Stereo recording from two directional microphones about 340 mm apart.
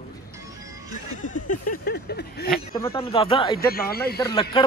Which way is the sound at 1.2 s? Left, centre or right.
Left.